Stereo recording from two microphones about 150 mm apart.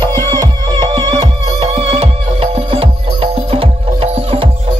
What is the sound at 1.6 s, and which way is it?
Music, 45° right (ahead or behind).